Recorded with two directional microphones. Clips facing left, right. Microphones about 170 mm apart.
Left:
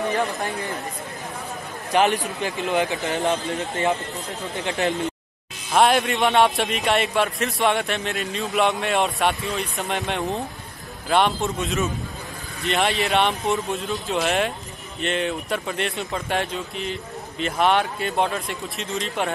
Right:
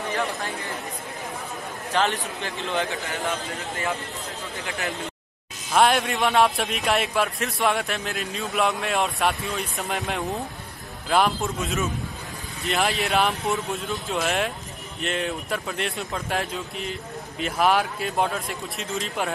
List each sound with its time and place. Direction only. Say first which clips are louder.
1.9 s a man's voice: left 5 dB; 15° left (ahead or behind)
5.8 s a man's voice: left 2 dB; centre (ahead or behind)